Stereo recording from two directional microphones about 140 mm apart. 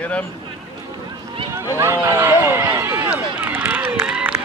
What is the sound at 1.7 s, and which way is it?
Run, 20° right (ahead or behind).